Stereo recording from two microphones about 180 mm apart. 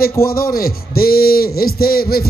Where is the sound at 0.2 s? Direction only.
55° left (ahead or behind).